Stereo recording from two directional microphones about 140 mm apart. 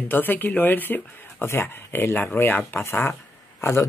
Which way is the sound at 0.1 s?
15° left (ahead or behind).